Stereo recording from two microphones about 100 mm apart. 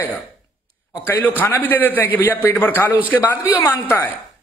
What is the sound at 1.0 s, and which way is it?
Speech, 20° left (ahead or behind).